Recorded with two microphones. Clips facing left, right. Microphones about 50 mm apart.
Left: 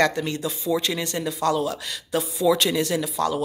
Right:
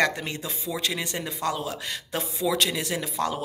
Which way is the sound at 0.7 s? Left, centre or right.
Centre.